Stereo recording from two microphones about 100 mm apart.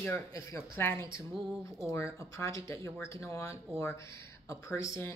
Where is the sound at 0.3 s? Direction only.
30° left (ahead or behind).